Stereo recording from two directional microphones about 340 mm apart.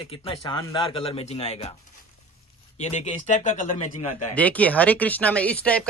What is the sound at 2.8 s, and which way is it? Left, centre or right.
A man's voice, centre.